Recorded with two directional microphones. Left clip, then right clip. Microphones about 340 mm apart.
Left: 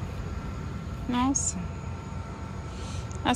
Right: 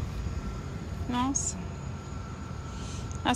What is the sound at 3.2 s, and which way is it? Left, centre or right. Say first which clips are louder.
Speech: left 1 dB; centre.